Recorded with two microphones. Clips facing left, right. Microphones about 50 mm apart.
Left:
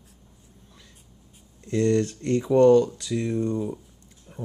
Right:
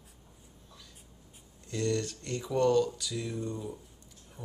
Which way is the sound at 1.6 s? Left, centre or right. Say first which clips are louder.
Left 9 dB; left.